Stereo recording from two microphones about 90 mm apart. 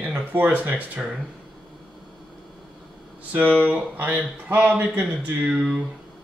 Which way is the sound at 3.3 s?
20° right (ahead or behind).